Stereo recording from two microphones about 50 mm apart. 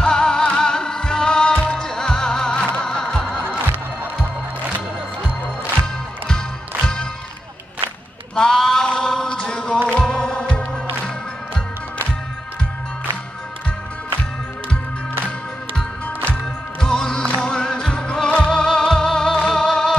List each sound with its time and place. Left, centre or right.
0.0 s music: centre
6.2 s music: centre
8.4 s chant: centre
9.8 s music: centre
16.8 s music: centre